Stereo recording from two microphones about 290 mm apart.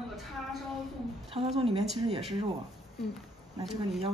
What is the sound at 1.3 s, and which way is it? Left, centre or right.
Speech, centre.